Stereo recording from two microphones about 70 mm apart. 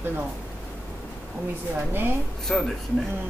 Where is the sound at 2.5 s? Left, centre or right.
Centre.